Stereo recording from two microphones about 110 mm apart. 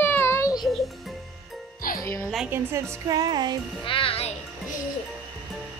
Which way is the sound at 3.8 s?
55° left (ahead or behind).